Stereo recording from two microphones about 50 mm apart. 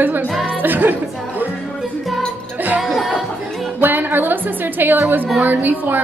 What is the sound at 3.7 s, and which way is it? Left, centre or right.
A woman's voice, right.